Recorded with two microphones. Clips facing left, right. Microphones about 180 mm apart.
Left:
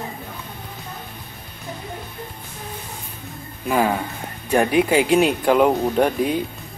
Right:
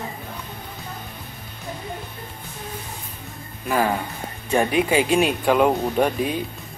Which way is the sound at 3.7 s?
10° left (ahead or behind).